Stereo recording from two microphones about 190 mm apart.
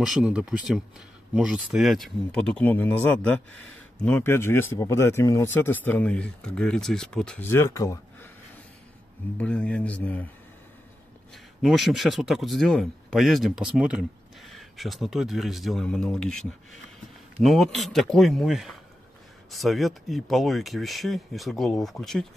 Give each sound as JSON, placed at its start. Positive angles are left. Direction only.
{"t": 0.0, "sound": "speech", "side_deg": -5}
{"t": 9.4, "sound": "speech", "side_deg": 5}
{"t": 11.6, "sound": "speech", "side_deg": 0}